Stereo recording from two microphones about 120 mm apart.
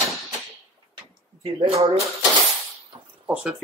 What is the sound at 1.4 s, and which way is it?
Speech, 50° right (ahead or behind).